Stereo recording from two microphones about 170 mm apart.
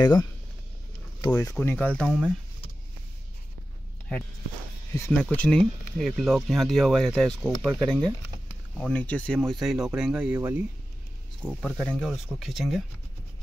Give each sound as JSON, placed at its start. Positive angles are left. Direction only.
{"t": 0.0, "sound": "speech", "side_deg": 25}
{"t": 1.3, "sound": "speech", "side_deg": 10}
{"t": 4.9, "sound": "speech", "side_deg": 10}
{"t": 7.4, "sound": "speech", "side_deg": -10}
{"t": 7.8, "sound": "speech", "side_deg": 5}
{"t": 11.4, "sound": "speech", "side_deg": 5}